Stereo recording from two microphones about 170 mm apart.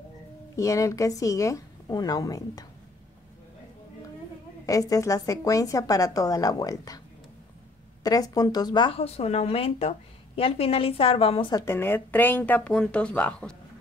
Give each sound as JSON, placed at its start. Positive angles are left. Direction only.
{"t": 0.6, "sound": "a woman's voice", "side_deg": 20}
{"t": 4.6, "sound": "a woman's voice", "side_deg": 20}
{"t": 8.0, "sound": "speech", "side_deg": 20}
{"t": 11.5, "sound": "speech", "side_deg": 15}